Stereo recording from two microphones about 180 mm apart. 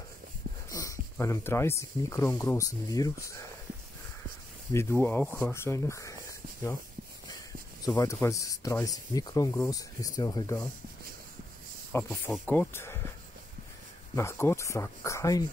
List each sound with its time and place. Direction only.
0.7 s a sound: 20° left (ahead or behind)
1.1 s speech: 15° left (ahead or behind)
4.7 s speech: 15° left (ahead or behind)
7.9 s speech: 15° left (ahead or behind)
11.9 s speech: 5° left (ahead or behind)
14.1 s speech: 15° left (ahead or behind)